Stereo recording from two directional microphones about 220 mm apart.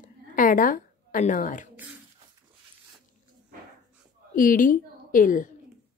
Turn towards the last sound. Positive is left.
turn(degrees=35)  # may be behind; listen again after turning